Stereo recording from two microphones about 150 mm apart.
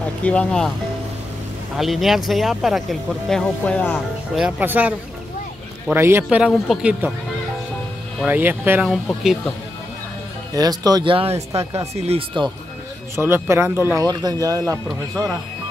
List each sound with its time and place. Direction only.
0.2 s speech: 10° left (ahead or behind)
1.8 s speech: centre (ahead or behind)
4.4 s speech: 10° right (ahead or behind)
5.9 s speech: 15° right (ahead or behind)
8.3 s speech: 15° right (ahead or behind)
10.5 s speech: 25° right (ahead or behind)
11.3 s speech: 20° right (ahead or behind)
11.9 s speech: 40° right (ahead or behind)
13.1 s speech: 15° right (ahead or behind)
14.9 s speech: centre (ahead or behind)